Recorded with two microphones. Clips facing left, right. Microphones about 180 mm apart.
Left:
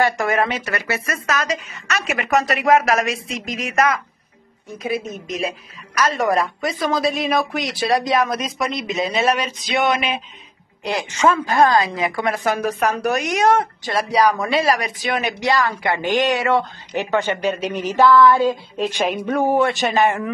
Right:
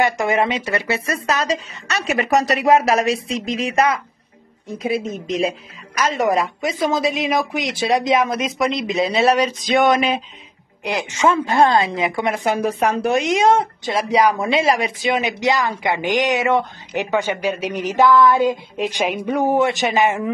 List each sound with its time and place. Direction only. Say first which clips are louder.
0.0 s a woman's voice: right 1 dB; 20° right (ahead or behind)
9.0 s speech: right 4 dB; 40° right (ahead or behind)
9.6 s a sound: right 4 dB; 45° right (ahead or behind)
10.8 s a woman's voice: even; 15° right (ahead or behind)